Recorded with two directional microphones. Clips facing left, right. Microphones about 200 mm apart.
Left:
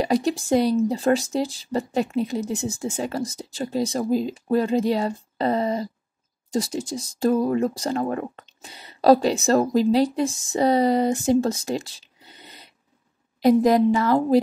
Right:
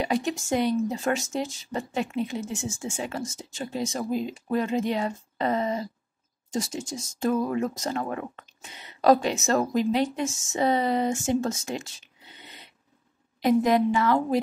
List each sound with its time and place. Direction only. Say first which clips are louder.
0.0 s speech: left 5 dB; 35° left (ahead or behind)